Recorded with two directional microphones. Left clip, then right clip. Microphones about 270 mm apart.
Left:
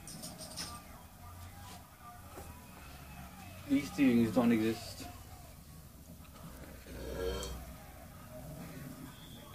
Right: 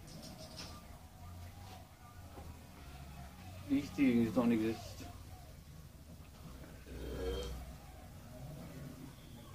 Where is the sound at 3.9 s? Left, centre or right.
Centre.